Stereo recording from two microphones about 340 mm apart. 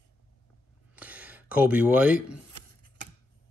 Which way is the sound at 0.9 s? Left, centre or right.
Centre.